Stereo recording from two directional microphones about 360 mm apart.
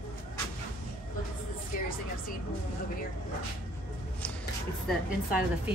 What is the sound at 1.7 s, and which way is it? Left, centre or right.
Vehicle, left.